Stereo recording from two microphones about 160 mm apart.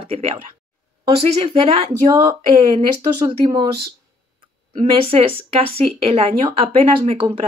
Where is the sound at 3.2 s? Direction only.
25° right (ahead or behind).